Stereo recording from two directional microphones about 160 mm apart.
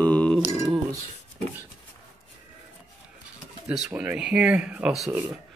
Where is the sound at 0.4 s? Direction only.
20° right (ahead or behind).